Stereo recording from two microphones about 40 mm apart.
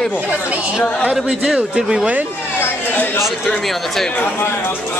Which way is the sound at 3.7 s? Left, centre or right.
Centre.